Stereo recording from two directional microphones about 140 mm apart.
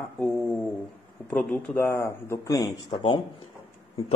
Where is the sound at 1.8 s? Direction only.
20° left (ahead or behind); by 3.2 s 35° left (ahead or behind).